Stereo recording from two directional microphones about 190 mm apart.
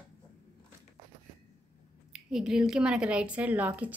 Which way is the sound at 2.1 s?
Centre (ahead or behind).